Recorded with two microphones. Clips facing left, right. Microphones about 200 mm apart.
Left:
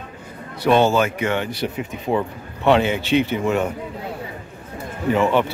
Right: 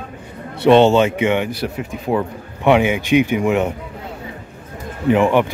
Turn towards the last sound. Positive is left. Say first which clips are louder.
# right 4 dB
turn(degrees=-15)  # may be behind; listen again after turning